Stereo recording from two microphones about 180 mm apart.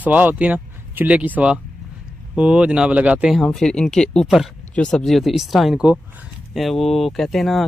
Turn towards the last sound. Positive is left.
turn(degrees=0)  # may be behind; listen again after turning